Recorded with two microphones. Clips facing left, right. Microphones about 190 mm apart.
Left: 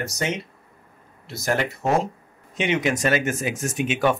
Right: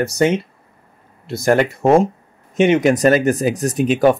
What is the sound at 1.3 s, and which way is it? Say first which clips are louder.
Speech: right 9 dB; 55° right (ahead or behind).